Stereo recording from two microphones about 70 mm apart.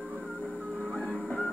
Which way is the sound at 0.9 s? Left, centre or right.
Centre.